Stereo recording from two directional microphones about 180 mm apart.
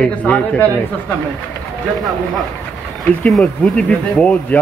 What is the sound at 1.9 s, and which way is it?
A man's voice, centre (ahead or behind).